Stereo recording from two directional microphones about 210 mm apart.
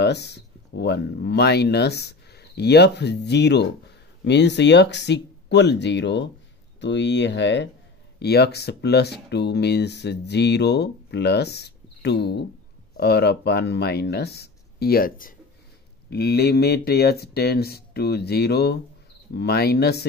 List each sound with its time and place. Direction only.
0.0 s speech: 50° left (ahead or behind)